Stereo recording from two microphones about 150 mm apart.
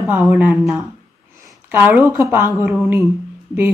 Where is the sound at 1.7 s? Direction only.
15° right (ahead or behind).